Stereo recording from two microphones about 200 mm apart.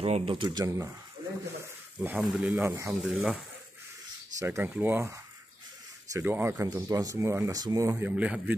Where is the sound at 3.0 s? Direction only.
Centre (ahead or behind).